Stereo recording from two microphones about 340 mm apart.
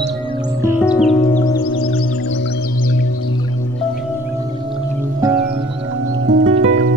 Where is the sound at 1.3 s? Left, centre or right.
Centre.